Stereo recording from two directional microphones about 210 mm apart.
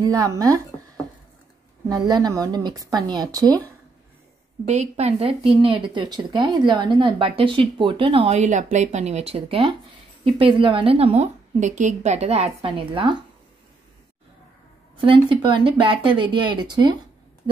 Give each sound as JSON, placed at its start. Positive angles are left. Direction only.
{"t": 0.2, "sound": "speech", "side_deg": -15}
{"t": 2.0, "sound": "speech", "side_deg": -20}
{"t": 4.6, "sound": "a woman's voice", "side_deg": -30}
{"t": 15.0, "sound": "speech", "side_deg": -25}